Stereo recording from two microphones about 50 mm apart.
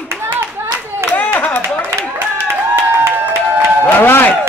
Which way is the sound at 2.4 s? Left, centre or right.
Right.